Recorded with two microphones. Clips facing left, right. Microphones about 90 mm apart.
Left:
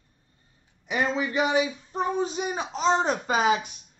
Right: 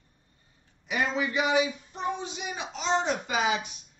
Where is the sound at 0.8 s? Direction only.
35° left (ahead or behind).